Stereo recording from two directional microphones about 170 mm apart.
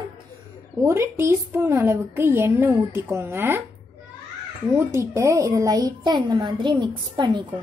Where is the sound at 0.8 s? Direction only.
15° right (ahead or behind).